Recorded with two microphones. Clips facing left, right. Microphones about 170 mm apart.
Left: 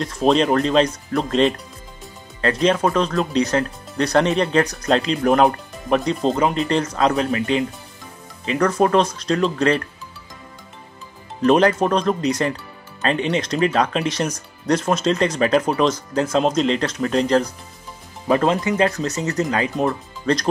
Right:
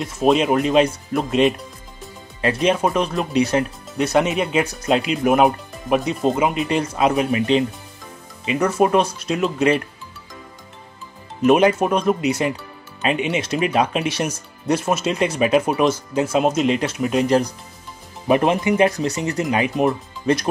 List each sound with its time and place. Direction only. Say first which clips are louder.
0.0 s speech: even; 5° right (ahead or behind)
8.5 s speech: even; 10° right (ahead or behind)
11.4 s speech: right 1 dB; 10° right (ahead or behind)